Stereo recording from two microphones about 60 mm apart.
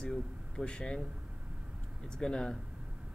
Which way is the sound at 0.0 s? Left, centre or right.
Centre.